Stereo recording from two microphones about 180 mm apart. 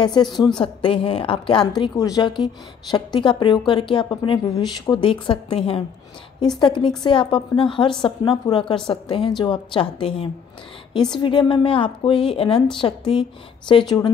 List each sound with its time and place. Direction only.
0.0 s a woman's voice: 25° left (ahead or behind)